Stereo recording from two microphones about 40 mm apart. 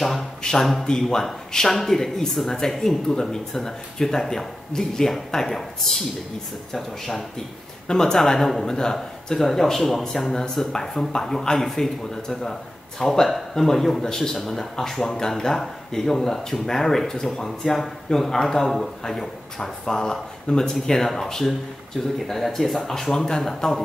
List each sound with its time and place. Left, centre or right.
0.0 s a sound: centre
0.4 s speech: centre
7.9 s speech: centre
10.7 s speech: centre